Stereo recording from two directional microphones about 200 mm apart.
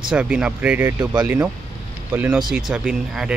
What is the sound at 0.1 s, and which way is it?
Speech, 5° right (ahead or behind).